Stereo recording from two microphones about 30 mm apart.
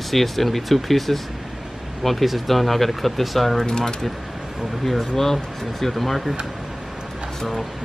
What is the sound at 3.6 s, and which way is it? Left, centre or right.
Speech, left.